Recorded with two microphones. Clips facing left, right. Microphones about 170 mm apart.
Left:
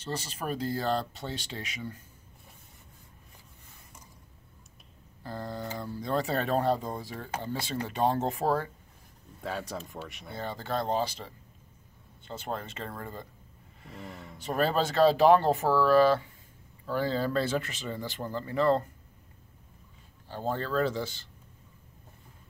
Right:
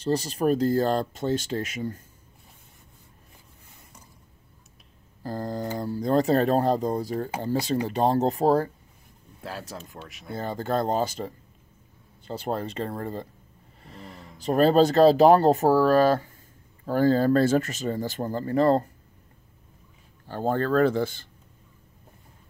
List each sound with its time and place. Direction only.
0.0 s speech: 40° right (ahead or behind)
5.2 s speech: 40° right (ahead or behind)
9.4 s speech: centre (ahead or behind)
10.3 s speech: 45° right (ahead or behind)
13.9 s speech: centre (ahead or behind)
14.4 s speech: 35° right (ahead or behind)
20.2 s speech: 55° right (ahead or behind)